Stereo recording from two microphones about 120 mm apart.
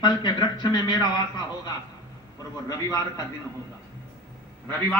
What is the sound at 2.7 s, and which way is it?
Speech, 30° left (ahead or behind).